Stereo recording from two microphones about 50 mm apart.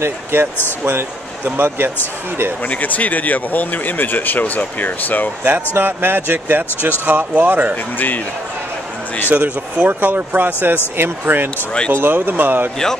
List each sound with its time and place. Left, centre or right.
0.0 s speech: right
2.6 s speech: left
5.4 s speech: right
7.7 s speech: left
9.3 s speech: right